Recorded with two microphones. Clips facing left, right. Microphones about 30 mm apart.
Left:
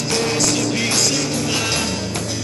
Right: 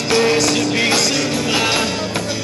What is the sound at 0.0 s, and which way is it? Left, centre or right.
Music, right.